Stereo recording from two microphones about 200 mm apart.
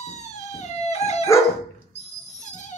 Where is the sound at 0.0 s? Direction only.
35° left (ahead or behind).